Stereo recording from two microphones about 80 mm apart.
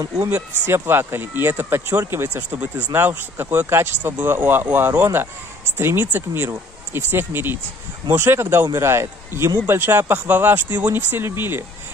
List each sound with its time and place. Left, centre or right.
0.3 s speech: right